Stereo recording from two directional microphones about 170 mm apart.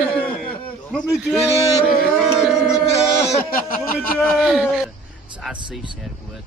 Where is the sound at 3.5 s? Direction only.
55° left (ahead or behind).